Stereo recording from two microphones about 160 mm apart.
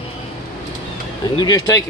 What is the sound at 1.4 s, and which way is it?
Speech, 25° left (ahead or behind).